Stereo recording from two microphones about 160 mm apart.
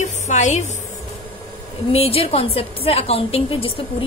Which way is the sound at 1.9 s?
40° left (ahead or behind).